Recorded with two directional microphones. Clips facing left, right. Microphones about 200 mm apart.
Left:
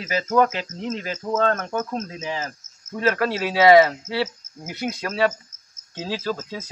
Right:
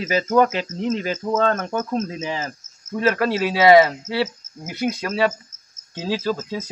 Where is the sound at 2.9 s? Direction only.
10° right (ahead or behind).